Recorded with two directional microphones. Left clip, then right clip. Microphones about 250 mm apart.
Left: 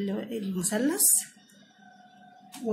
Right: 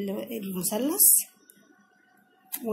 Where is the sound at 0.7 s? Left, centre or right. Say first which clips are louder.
Even; centre.